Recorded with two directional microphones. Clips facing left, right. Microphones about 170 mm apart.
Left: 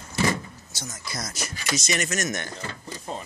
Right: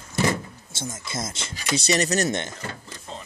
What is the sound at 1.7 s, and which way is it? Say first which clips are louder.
Speech: right 6 dB; 35° right (ahead or behind).